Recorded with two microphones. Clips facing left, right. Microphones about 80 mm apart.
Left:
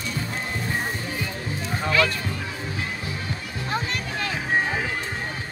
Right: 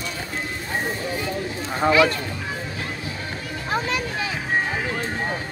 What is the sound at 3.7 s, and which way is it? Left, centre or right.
Music, centre.